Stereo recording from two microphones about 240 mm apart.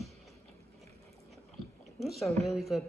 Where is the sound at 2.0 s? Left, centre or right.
Centre.